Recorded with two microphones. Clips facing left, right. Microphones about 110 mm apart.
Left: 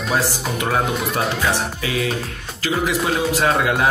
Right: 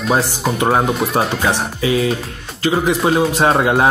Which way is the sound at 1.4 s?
30° right (ahead or behind).